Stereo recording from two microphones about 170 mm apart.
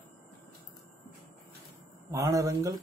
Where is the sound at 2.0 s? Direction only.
20° right (ahead or behind).